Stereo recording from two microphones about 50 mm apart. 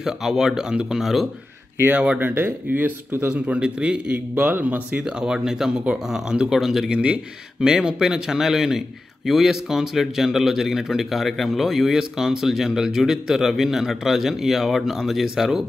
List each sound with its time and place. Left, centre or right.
0.0 s a man's voice: centre
1.0 s speech: centre
1.9 s a man's voice: right
2.1 s speech: right
3.3 s a man's voice: right
4.4 s speech: right
5.0 s a man's voice: centre
6.9 s a man's voice: centre